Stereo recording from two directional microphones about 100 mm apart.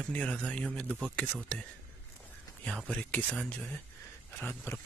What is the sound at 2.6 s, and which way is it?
Speech, 10° left (ahead or behind).